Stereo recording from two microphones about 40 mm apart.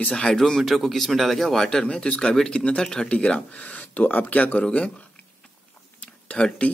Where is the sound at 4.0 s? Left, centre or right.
Left.